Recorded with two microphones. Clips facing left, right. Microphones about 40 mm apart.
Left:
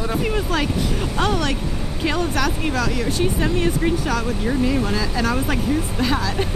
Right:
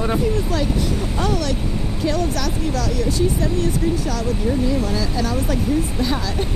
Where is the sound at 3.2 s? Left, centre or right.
Left.